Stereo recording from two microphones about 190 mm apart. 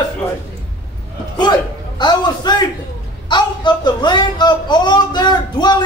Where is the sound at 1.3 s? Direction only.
20° left (ahead or behind).